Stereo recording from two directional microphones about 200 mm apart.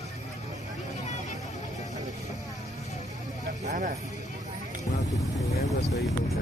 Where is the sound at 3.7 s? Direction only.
40° right (ahead or behind).